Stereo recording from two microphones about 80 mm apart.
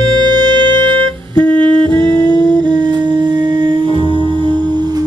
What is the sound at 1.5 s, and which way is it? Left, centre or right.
Music, right.